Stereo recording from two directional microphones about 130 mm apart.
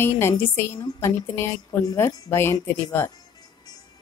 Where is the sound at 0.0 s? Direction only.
20° left (ahead or behind).